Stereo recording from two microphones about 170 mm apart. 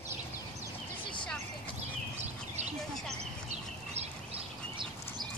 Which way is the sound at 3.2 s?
40° right (ahead or behind).